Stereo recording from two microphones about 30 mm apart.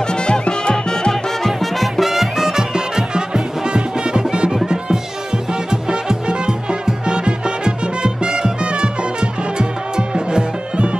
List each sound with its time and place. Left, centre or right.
0.0 s music: left
1.1 s music: centre; by 11.0 s right